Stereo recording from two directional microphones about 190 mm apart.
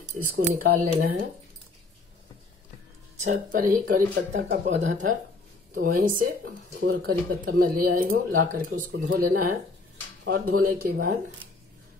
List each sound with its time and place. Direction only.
0.6 s speech: 50° right (ahead or behind)
3.2 s speech: 40° right (ahead or behind)
6.8 s speech: 60° right (ahead or behind)